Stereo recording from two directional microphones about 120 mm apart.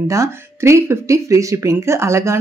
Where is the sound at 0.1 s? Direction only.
25° right (ahead or behind).